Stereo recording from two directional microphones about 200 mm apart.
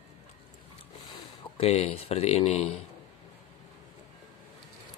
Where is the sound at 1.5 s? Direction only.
30° left (ahead or behind).